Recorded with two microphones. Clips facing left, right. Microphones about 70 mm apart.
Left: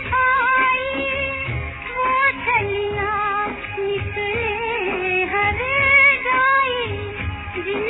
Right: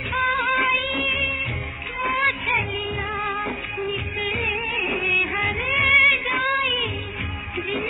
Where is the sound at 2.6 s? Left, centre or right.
Left.